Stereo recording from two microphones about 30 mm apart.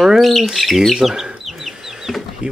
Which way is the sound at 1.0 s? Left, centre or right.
Centre.